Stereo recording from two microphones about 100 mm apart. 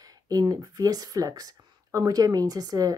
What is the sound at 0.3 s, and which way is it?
Speech, 40° right (ahead or behind).